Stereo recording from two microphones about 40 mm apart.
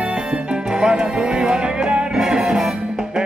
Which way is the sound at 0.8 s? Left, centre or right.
Centre.